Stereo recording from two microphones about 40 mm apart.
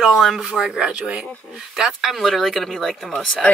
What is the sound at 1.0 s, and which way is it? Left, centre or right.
Speech, right.